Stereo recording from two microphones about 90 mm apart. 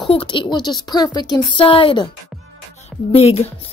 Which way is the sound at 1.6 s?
75° left (ahead or behind).